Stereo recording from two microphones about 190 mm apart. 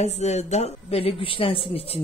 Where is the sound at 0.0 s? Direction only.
35° left (ahead or behind).